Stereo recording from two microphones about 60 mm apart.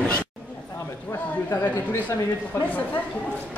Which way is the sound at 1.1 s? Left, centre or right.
Left.